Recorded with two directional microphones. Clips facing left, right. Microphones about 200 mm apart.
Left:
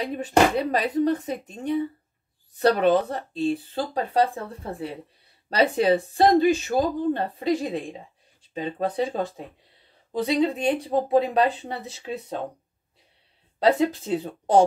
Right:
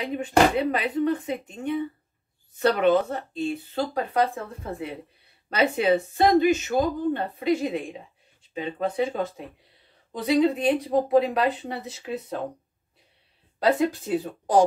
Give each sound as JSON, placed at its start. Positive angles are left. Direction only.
{"t": 0.0, "sound": "speech", "side_deg": 35}
{"t": 5.5, "sound": "speech", "side_deg": 35}
{"t": 13.6, "sound": "speech", "side_deg": 25}